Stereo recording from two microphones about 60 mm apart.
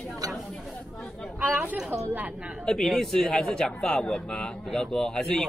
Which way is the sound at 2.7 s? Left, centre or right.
Centre.